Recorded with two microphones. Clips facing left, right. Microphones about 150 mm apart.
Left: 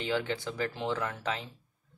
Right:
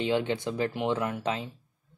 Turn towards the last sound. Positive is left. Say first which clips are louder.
# right 4 dB
turn(degrees=-20)  # may be behind; listen again after turning